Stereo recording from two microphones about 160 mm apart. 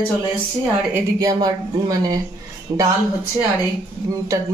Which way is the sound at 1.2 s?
20° right (ahead or behind).